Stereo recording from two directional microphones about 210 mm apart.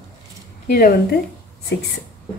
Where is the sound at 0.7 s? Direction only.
45° left (ahead or behind).